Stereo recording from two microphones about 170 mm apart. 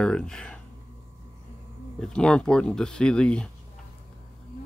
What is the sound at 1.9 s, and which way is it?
Speech, 5° left (ahead or behind).